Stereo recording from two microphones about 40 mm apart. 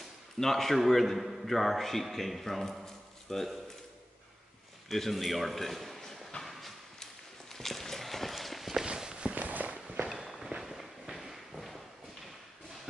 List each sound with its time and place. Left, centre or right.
0.4 s a man's voice: centre
4.8 s a man's voice: centre
6.4 s a sound: centre
7.5 s walk: centre
8.8 s walk: centre
9.3 s walk: right
10.2 s walk: centre
10.6 s a sound: centre